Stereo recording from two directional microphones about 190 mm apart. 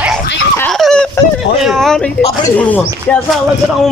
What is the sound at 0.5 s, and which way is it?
Speech, 5° left (ahead or behind).